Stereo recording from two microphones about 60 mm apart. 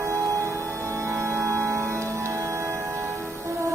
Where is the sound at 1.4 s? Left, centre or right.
Right.